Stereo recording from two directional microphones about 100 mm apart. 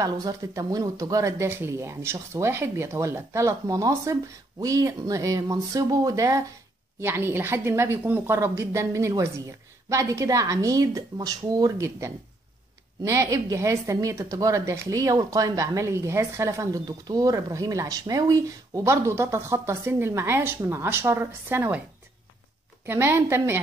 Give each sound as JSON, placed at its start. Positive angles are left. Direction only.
{"t": 0.0, "sound": "speech", "side_deg": -35}
{"t": 7.0, "sound": "speech", "side_deg": -25}
{"t": 22.8, "sound": "speech", "side_deg": -25}